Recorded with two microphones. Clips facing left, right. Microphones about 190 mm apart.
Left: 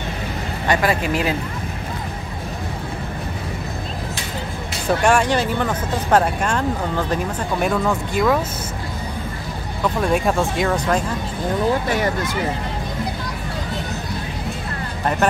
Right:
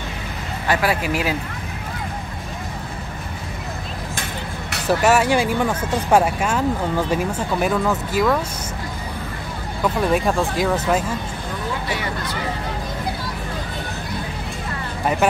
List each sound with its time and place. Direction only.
0.7 s speech: 5° right (ahead or behind)
4.8 s speech: 5° right (ahead or behind)
9.9 s speech: centre (ahead or behind)